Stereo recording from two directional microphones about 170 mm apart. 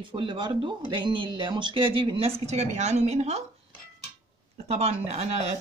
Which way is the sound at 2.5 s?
40° right (ahead or behind).